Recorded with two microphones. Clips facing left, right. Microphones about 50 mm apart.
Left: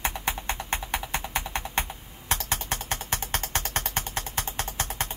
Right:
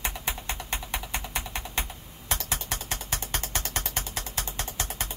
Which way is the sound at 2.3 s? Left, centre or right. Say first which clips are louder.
Left 3 dB; left.